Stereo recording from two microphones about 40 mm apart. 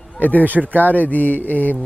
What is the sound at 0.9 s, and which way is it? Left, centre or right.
Speech, left.